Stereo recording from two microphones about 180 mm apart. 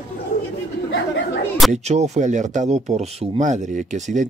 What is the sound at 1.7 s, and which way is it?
Speech, 40° right (ahead or behind).